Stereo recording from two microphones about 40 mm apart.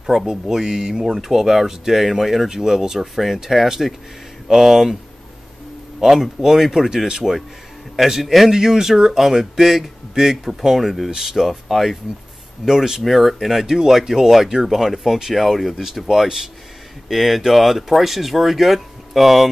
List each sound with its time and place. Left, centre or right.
0.0 s speech: centre
5.9 s speech: centre
7.9 s speech: centre